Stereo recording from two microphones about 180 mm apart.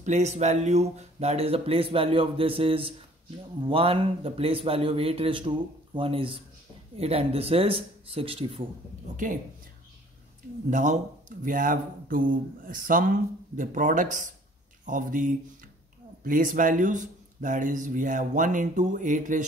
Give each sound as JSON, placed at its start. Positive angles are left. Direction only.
{"t": 0.0, "sound": "speech", "side_deg": -40}
{"t": 9.1, "sound": "speech", "side_deg": -45}
{"t": 10.7, "sound": "speech", "side_deg": -45}